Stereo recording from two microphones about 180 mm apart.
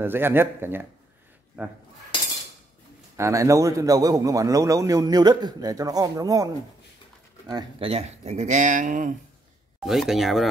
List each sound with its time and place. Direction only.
0.0 s speech: 10° right (ahead or behind)
3.2 s a man's voice: 15° right (ahead or behind)
7.9 s speech: 35° right (ahead or behind)
9.8 s speech: centre (ahead or behind)